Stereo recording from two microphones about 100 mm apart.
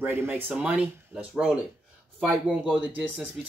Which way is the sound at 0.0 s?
20° right (ahead or behind).